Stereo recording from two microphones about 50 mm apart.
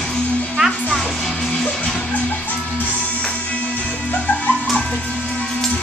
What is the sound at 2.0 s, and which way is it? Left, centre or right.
Music, left.